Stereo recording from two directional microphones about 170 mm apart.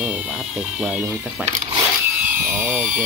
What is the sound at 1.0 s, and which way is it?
Speech, 15° right (ahead or behind).